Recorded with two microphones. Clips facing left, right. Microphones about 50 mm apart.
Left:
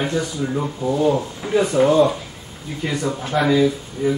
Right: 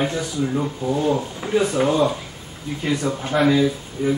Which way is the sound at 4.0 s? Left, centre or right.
Centre.